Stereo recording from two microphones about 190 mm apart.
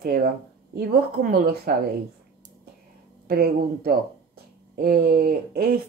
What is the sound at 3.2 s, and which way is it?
Speech, 55° right (ahead or behind).